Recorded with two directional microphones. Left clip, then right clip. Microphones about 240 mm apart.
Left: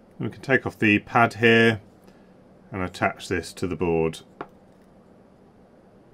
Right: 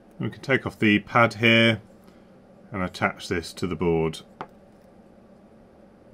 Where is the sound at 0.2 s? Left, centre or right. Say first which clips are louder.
Left 2 dB; left.